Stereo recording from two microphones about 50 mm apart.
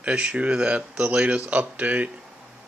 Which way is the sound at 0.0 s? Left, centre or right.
Right.